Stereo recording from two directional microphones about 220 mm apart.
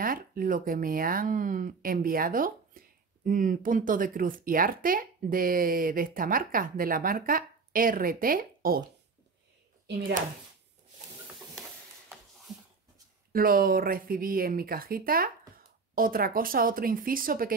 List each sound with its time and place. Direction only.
0.0 s speech: 40° right (ahead or behind)
9.8 s speech: 45° right (ahead or behind)
13.3 s speech: 40° right (ahead or behind)